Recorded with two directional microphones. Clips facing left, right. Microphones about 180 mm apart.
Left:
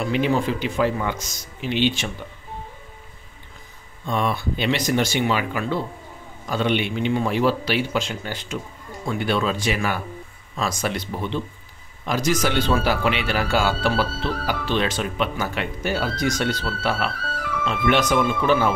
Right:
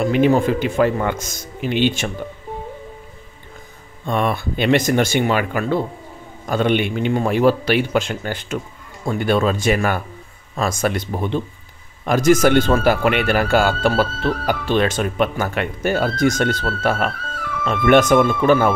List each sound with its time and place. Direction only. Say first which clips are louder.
0.0 s speech: right 6 dB; 50° right (ahead or behind)
4.0 s speech: right 3 dB; 55° right (ahead or behind)